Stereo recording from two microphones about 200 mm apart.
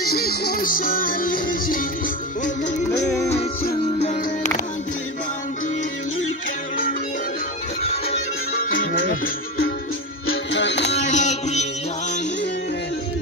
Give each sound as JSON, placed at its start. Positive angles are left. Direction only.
{"t": 0.1, "sound": "music", "side_deg": 50}
{"t": 4.0, "sound": "music", "side_deg": 35}
{"t": 7.8, "sound": "music", "side_deg": 30}
{"t": 8.7, "sound": "music", "side_deg": 45}
{"t": 10.2, "sound": "music", "side_deg": 65}
{"t": 11.1, "sound": "music", "side_deg": 35}